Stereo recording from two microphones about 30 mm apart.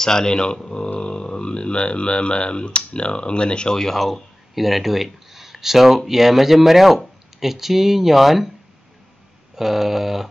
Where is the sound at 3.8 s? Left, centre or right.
Centre.